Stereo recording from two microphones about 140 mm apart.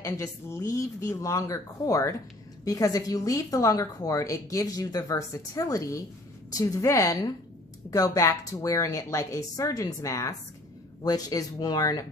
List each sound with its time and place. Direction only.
0.0 s a woman's voice: 20° left (ahead or behind)